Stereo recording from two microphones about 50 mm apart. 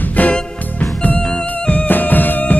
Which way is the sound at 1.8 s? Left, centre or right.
Left.